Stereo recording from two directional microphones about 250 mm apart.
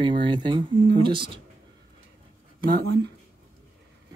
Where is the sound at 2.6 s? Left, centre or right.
Right.